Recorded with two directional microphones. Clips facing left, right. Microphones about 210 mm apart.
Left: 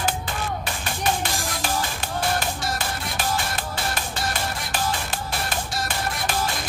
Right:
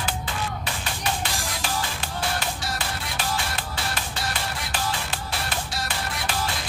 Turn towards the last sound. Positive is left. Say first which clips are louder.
# left 2 dB
turn(degrees=45)  # may be behind; listen again after turning